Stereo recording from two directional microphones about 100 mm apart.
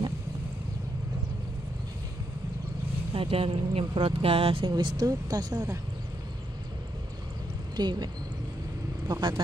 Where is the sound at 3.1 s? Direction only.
65° right (ahead or behind).